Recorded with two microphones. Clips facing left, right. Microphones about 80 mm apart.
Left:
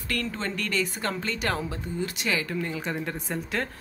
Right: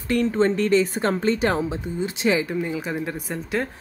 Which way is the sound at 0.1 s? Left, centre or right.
Right.